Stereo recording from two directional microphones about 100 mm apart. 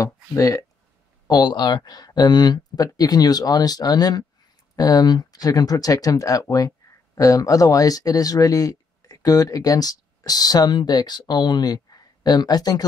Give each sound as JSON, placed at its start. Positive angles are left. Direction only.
{"t": 0.0, "sound": "speech", "side_deg": 30}